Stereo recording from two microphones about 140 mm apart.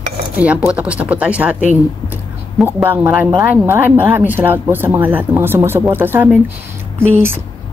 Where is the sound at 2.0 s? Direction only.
15° right (ahead or behind).